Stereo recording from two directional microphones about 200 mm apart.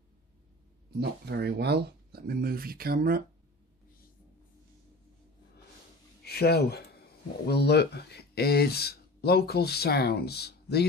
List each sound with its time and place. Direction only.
0.9 s speech: 55° right (ahead or behind)
6.2 s speech: 55° left (ahead or behind)